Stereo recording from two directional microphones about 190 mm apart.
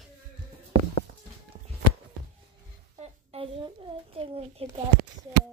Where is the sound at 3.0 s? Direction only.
30° right (ahead or behind).